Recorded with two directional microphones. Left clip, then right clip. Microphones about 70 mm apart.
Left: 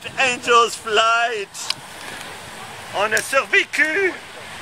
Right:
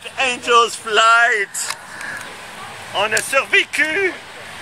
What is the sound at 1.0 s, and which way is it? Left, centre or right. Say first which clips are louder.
Speech: right 5 dB; centre.